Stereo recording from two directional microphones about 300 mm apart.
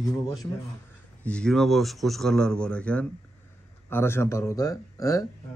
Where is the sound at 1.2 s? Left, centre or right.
Centre.